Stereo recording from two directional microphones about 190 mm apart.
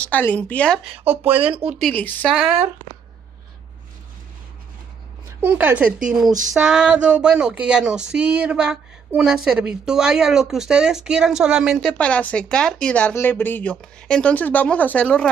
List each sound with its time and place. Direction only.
0.0 s speech: 10° left (ahead or behind)
0.8 s speech: 10° right (ahead or behind)
1.2 s speech: 30° right (ahead or behind)
1.5 s speech: 5° right (ahead or behind)
1.9 s speech: 10° left (ahead or behind)
2.3 s speech: centre (ahead or behind)
5.4 s speech: 10° right (ahead or behind); by 15.2 s 5° left (ahead or behind)